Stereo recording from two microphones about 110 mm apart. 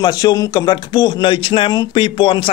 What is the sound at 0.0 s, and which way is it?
Speech, 35° left (ahead or behind).